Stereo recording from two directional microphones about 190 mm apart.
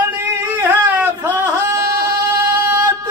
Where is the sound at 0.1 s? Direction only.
10° right (ahead or behind).